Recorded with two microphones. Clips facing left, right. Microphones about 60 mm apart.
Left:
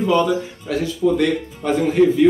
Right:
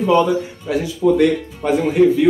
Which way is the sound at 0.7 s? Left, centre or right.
Centre.